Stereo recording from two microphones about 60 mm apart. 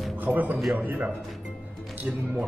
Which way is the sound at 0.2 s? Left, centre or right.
Right.